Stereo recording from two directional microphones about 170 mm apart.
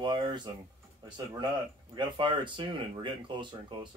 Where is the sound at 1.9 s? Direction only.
30° right (ahead or behind).